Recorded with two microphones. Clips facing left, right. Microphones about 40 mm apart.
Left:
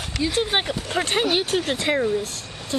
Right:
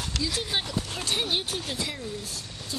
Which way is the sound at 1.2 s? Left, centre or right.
Left.